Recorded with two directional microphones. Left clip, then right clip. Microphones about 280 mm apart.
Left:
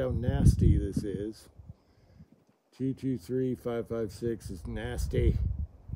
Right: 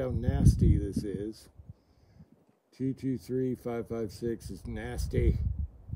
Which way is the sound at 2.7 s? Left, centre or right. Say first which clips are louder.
Even; centre.